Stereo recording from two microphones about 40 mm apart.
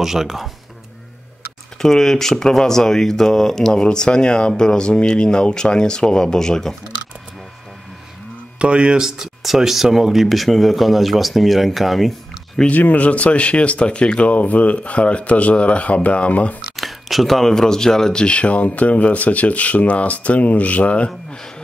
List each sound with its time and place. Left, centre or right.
0.0 s speech: centre
1.8 s speech: centre
8.5 s speech: right
9.0 s speech: centre
12.6 s speech: left
16.7 s speech: centre
18.2 s speech: left